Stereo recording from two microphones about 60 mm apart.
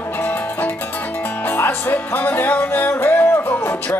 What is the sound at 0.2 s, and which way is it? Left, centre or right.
Music, left.